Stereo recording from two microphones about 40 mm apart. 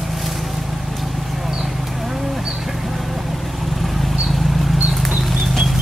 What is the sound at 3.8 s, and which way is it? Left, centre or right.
Vehicle, centre.